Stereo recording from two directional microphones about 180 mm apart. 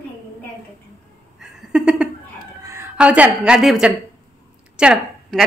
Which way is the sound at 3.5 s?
Centre (ahead or behind).